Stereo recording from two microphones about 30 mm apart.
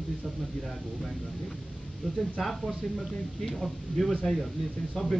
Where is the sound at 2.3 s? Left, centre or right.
Centre.